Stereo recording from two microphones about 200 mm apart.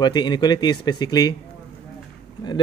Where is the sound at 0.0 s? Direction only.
20° left (ahead or behind).